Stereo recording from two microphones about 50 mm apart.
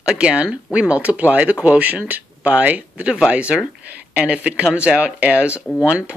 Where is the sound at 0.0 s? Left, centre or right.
Right.